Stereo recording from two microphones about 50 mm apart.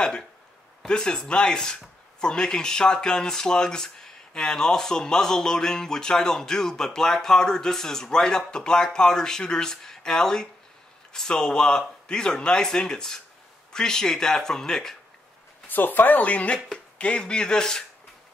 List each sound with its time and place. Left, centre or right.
0.8 s speech: centre
15.7 s speech: left; by 17.8 s centre